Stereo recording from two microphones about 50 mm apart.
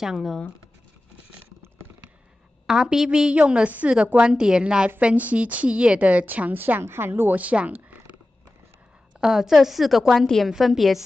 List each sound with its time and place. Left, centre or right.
0.0 s a woman's voice: centre
2.6 s a woman's voice: centre
5.0 s a woman's voice: right
6.8 s a woman's voice: right
7.3 s a sound: right
9.2 s a woman's voice: centre